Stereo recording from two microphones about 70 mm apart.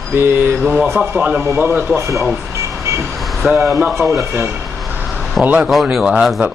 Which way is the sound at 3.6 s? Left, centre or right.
Centre.